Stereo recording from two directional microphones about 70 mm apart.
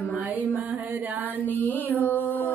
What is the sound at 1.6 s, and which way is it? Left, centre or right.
Mantra, left.